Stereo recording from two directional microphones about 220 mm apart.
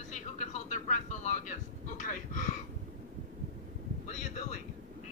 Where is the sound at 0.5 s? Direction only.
35° left (ahead or behind).